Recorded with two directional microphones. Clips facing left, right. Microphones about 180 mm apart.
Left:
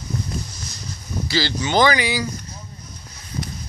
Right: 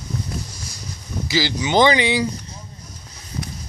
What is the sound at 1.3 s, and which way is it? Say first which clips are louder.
Speech: right 2 dB; 15° right (ahead or behind).